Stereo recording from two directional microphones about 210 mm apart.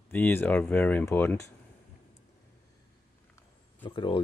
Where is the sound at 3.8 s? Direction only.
25° left (ahead or behind).